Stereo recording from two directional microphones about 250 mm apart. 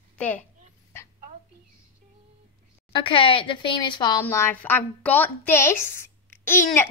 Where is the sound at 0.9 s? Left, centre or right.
Centre.